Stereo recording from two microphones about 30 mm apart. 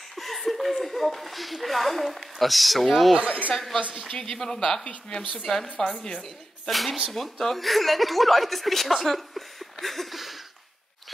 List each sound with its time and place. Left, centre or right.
0.1 s laughter: centre
0.8 s speech: centre
3.2 s speech: right
4.2 s speech: centre
4.8 s a woman's voice: left
5.5 s speech: centre
6.7 s speech: centre